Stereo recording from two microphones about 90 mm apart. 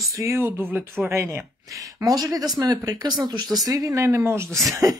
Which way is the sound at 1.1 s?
30° right (ahead or behind).